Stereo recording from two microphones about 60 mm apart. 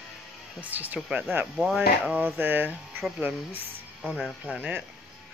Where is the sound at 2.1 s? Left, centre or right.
Right.